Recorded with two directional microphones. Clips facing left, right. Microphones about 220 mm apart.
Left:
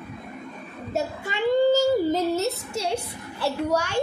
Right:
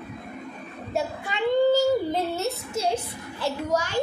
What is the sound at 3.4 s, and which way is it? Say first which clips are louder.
Speech: left 2 dB; 65° left (ahead or behind).